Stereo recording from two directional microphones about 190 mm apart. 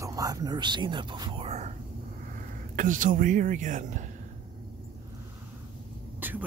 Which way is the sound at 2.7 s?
45° right (ahead or behind).